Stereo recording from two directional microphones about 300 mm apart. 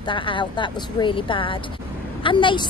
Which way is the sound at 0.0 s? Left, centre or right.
Centre.